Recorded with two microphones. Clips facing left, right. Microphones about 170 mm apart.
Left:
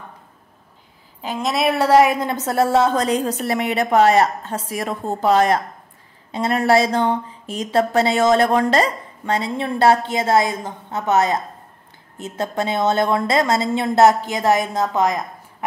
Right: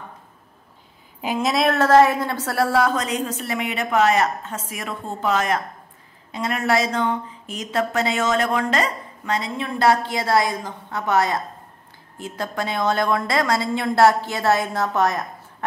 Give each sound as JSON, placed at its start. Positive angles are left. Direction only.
{"t": 1.2, "sound": "a woman's voice", "side_deg": -10}
{"t": 1.5, "sound": "a woman's voice", "side_deg": 5}